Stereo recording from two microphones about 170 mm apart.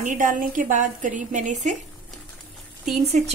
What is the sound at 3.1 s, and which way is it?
Speech, 40° right (ahead or behind).